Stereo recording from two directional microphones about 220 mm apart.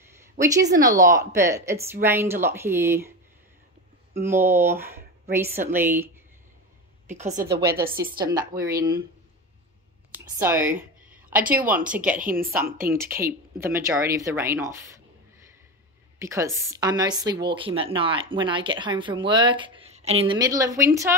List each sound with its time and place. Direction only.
0.7 s a woman's voice: 15° right (ahead or behind)
7.1 s a woman's voice: 30° right (ahead or behind)
7.4 s a woman's voice: 45° right (ahead or behind)
8.2 s a woman's voice: 15° right (ahead or behind)
10.4 s a woman's voice: 10° right (ahead or behind)
12.2 s a woman's voice: 40° right (ahead or behind)
12.9 s a woman's voice: 10° right (ahead or behind)